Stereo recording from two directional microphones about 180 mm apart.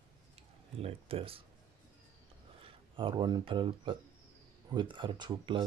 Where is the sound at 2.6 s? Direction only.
30° right (ahead or behind).